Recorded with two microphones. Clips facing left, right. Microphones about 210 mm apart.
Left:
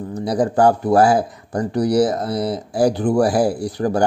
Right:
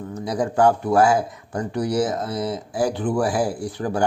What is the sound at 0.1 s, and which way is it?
Speech, 35° left (ahead or behind).